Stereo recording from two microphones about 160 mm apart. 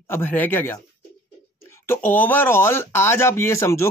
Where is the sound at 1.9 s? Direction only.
10° left (ahead or behind).